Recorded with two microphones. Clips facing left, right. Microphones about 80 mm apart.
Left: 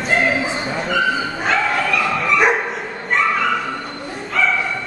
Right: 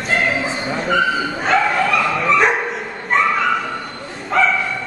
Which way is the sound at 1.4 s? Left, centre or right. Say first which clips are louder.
Right 3 dB; centre.